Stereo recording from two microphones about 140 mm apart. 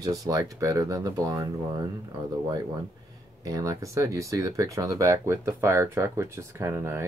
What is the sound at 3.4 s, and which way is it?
Speech, 25° right (ahead or behind).